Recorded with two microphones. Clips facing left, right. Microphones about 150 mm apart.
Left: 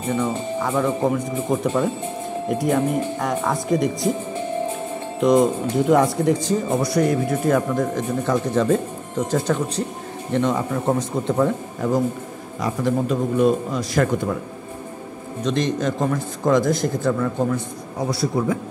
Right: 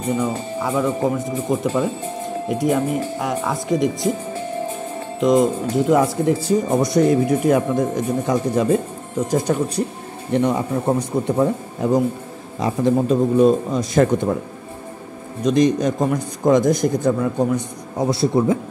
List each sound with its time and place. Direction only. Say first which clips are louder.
0.2 s speech: even; 10° right (ahead or behind)
5.2 s speech: even; centre (ahead or behind)
6.7 s a man's voice: right 3 dB; 20° right (ahead or behind)
15.4 s speech: right 5 dB; 15° right (ahead or behind)